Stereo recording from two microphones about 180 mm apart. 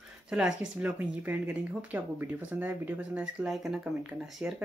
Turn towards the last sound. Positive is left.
turn(degrees=-5)  # may be behind; listen again after turning